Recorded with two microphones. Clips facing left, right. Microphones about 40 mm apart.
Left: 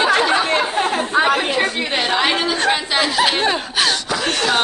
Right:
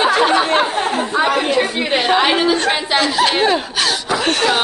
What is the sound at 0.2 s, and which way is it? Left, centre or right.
Chatter, right.